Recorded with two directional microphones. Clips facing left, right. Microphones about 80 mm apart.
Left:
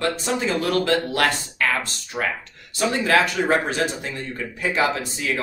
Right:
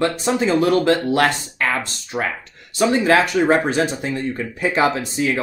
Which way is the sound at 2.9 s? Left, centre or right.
Right.